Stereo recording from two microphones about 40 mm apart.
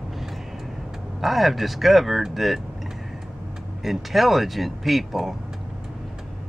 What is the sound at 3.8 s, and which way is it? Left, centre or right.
Speech, centre.